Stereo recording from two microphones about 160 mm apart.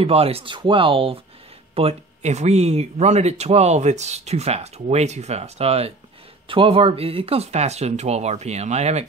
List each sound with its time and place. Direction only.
0.0 s speech: 40° right (ahead or behind)